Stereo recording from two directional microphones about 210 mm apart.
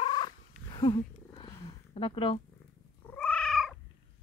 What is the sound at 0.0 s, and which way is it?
Cat, 20° left (ahead or behind).